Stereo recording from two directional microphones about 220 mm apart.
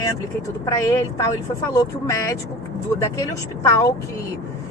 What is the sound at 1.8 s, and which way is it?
Speech, 15° left (ahead or behind).